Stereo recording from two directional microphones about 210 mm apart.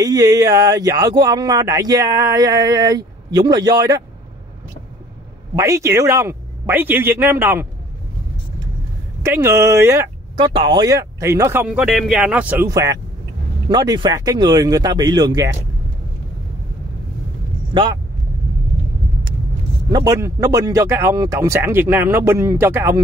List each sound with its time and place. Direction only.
0.0 s speech: 15° right (ahead or behind)
5.6 s speech: 15° right (ahead or behind)
9.2 s speech: 15° right (ahead or behind)
17.7 s speech: 25° right (ahead or behind)
19.9 s speech: 15° right (ahead or behind)